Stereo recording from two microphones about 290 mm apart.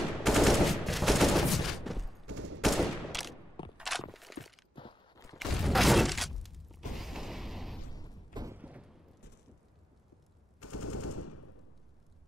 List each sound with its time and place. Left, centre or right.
0.2 s fusillade: centre
2.2 s fusillade: right
2.6 s fusillade: centre
3.7 s a sound: centre
4.7 s walk: centre
5.4 s shatter: centre
7.9 s a sound: centre
8.4 s a sound: centre
10.6 s machine gun: left